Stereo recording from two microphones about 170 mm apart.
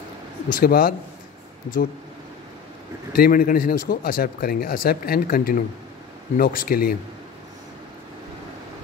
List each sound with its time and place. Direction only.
0.5 s speech: 55° left (ahead or behind)
3.2 s a man's voice: 55° left (ahead or behind)